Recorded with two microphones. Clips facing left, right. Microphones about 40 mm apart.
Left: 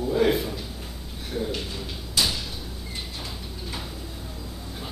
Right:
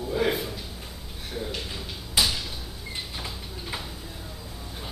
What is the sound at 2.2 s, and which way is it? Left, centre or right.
Cupboard open or close, centre.